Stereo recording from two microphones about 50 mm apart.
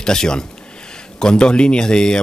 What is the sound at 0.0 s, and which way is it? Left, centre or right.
Speech, centre.